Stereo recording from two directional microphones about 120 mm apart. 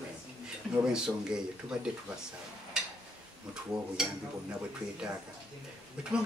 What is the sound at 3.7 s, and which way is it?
Speech, 5° right (ahead or behind).